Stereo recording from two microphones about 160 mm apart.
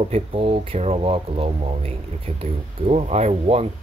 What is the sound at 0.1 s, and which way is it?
Speech, 40° right (ahead or behind).